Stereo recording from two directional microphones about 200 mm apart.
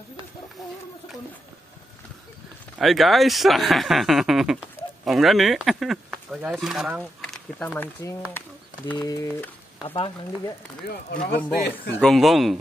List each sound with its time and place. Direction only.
2.8 s speech: centre (ahead or behind)
8.3 s bird: 10° left (ahead or behind)
8.9 s speech: 15° left (ahead or behind)
10.9 s speech: 50° left (ahead or behind)
12.0 s speech: centre (ahead or behind)